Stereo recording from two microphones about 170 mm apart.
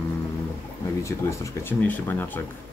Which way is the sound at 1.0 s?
15° left (ahead or behind).